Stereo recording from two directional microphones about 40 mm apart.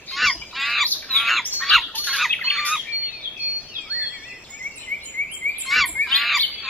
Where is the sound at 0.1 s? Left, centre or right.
Centre.